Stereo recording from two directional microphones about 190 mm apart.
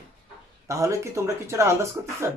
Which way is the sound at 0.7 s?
15° right (ahead or behind).